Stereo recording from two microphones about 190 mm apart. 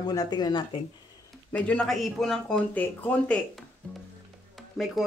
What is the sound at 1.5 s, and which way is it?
Speech, 5° left (ahead or behind).